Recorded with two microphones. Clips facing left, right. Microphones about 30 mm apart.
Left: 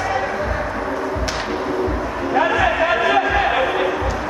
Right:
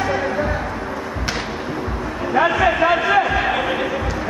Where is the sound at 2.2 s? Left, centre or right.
Centre.